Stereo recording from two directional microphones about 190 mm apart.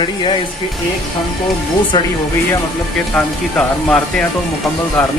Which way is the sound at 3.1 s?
5° left (ahead or behind).